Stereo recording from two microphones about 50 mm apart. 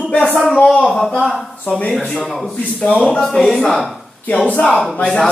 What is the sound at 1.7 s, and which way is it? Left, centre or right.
Speech, left.